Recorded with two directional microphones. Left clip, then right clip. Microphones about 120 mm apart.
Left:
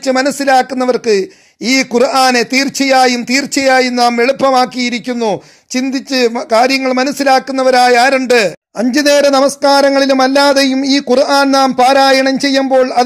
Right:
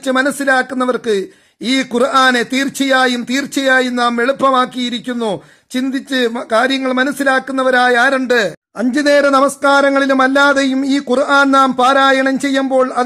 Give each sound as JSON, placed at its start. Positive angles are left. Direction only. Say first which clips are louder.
{"t": 0.0, "sound": "a man's voice", "louder": "left 2 dB", "side_deg": 10}
{"t": 3.9, "sound": "a man's voice", "louder": "left 4 dB", "side_deg": 5}